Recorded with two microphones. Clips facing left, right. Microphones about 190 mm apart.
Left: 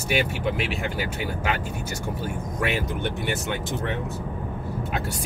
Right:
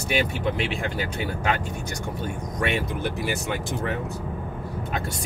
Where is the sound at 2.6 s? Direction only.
5° left (ahead or behind).